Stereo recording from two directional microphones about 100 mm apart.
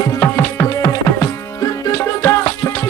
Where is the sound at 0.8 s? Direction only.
35° left (ahead or behind).